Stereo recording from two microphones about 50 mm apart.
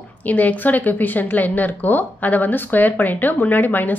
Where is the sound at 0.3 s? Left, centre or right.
Left.